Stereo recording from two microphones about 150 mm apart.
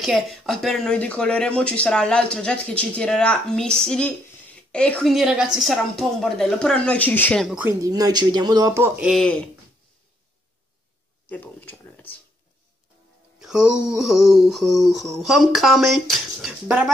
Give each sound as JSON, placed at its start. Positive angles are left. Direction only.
{"t": 0.0, "sound": "a woman's voice", "side_deg": 0}
{"t": 5.1, "sound": "a woman's voice", "side_deg": -5}
{"t": 7.4, "sound": "speech", "side_deg": -10}
{"t": 7.8, "sound": "speech", "side_deg": -25}
{"t": 9.0, "sound": "a woman's voice", "side_deg": 0}
{"t": 11.2, "sound": "a sound", "side_deg": 10}
{"t": 13.4, "sound": "a woman's voice", "side_deg": -5}